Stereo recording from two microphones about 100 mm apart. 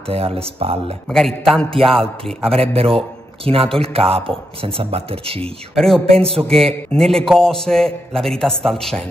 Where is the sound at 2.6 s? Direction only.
70° right (ahead or behind).